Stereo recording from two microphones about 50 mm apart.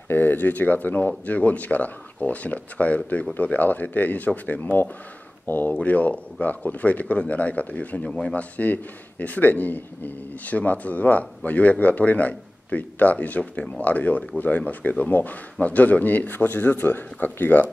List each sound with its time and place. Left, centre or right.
0.1 s speech: left